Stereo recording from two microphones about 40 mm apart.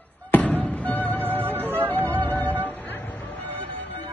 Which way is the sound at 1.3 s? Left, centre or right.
Right.